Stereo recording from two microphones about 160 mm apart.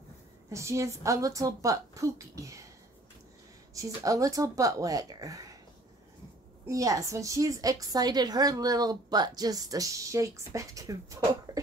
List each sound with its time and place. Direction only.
0.5 s a woman's voice: 20° right (ahead or behind)
3.7 s a woman's voice: 20° right (ahead or behind)
6.7 s a woman's voice: 20° right (ahead or behind)